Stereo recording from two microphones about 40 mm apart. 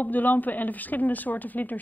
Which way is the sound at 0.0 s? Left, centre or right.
Left.